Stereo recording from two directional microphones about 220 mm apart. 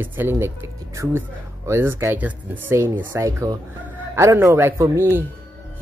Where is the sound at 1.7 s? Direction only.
10° right (ahead or behind).